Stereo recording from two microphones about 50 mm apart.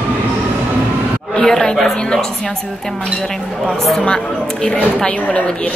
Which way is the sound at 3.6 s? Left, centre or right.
Centre.